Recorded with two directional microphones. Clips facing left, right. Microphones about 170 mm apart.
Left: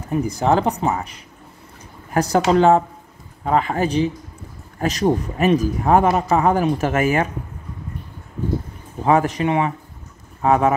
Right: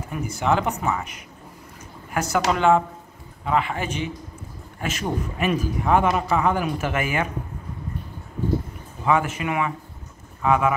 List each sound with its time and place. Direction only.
0.1 s a man's voice: 35° left (ahead or behind)
9.0 s a man's voice: 35° left (ahead or behind)